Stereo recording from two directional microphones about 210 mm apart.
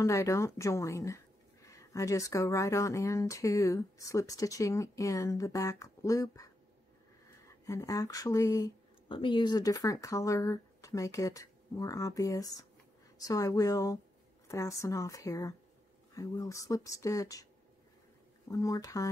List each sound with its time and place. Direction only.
0.0 s speech: 15° left (ahead or behind)
7.6 s speech: 15° left (ahead or behind)
18.5 s speech: 15° left (ahead or behind)